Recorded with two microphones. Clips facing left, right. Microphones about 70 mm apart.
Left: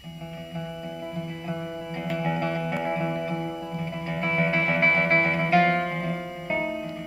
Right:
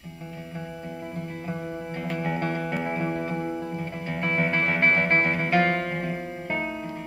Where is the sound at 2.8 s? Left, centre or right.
Centre.